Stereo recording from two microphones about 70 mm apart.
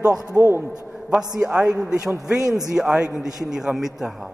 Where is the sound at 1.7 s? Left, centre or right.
Centre.